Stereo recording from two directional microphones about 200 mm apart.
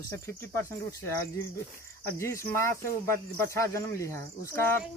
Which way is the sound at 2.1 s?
15° left (ahead or behind).